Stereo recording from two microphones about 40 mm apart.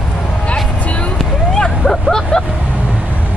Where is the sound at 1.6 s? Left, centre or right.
Centre.